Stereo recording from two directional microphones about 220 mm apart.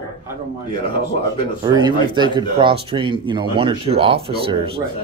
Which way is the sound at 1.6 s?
20° right (ahead or behind).